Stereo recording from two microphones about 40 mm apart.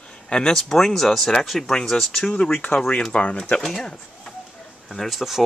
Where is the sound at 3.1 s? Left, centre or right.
Left.